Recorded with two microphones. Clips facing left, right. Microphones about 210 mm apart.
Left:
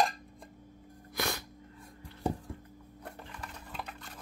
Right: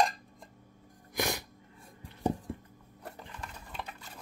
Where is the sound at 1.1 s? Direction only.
15° right (ahead or behind).